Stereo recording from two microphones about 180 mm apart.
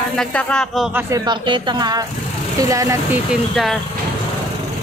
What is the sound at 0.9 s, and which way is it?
Speech, 20° right (ahead or behind).